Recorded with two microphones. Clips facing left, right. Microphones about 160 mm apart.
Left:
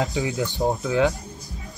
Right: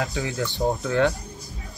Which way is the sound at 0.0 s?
20° left (ahead or behind).